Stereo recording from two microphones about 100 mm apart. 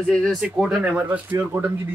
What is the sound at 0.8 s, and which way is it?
Speech, 15° right (ahead or behind).